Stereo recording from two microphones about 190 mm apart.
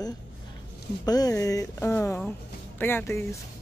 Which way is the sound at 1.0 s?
20° left (ahead or behind).